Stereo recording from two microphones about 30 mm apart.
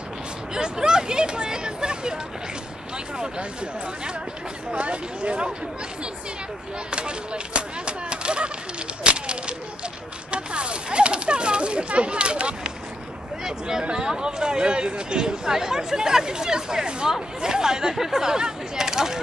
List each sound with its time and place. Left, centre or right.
0.6 s speech: right
4.7 s speech: right
6.9 s speech: right
13.4 s speech: right